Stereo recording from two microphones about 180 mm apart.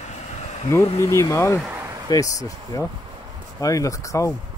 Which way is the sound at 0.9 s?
15° left (ahead or behind).